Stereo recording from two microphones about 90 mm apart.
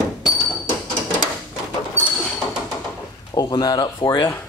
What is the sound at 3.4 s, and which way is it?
Speech, 50° left (ahead or behind).